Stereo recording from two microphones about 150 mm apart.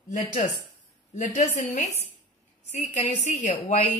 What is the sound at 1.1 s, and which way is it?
A woman's voice, 55° left (ahead or behind).